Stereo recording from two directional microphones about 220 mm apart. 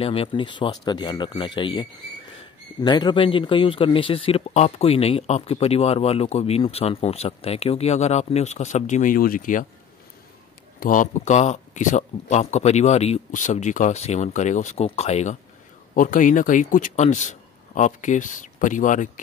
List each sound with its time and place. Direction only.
0.0 s speech: 25° left (ahead or behind)
10.8 s speech: 35° left (ahead or behind)